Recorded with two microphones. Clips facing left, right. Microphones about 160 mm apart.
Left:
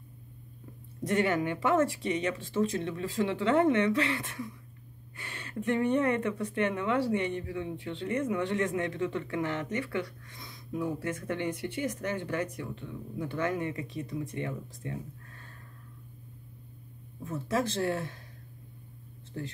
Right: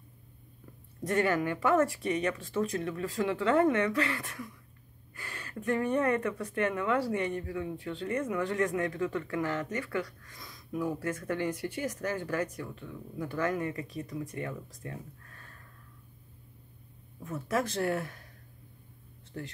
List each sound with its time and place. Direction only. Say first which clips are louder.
1.0 s speech: even; 25° left (ahead or behind)
17.2 s speech: left 1 dB; 25° left (ahead or behind)